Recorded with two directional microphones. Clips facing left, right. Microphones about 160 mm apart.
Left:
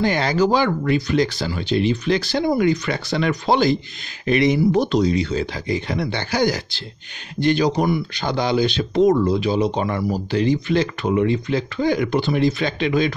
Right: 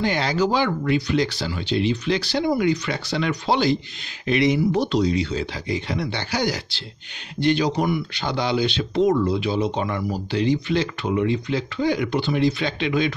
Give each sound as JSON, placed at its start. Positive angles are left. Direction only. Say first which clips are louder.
{"t": 0.0, "sound": "speech", "louder": "left 3 dB", "side_deg": 45}